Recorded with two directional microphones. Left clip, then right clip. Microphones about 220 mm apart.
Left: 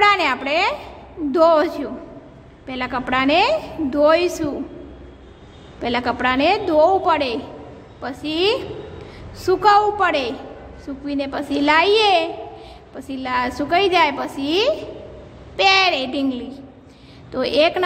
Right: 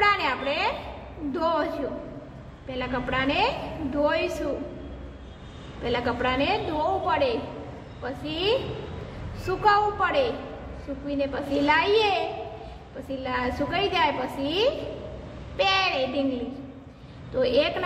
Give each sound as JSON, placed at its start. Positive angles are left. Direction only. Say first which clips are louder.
{"t": 0.0, "sound": "a sound", "louder": "left 7 dB", "side_deg": 50}
{"t": 1.3, "sound": "a woman's voice", "louder": "left 11 dB", "side_deg": 45}
{"t": 2.7, "sound": "a woman's voice", "louder": "left 6 dB", "side_deg": 50}
{"t": 5.8, "sound": "a woman's voice", "louder": "left 5 dB", "side_deg": 50}
{"t": 17.3, "sound": "a woman's voice", "louder": "left 5 dB", "side_deg": 50}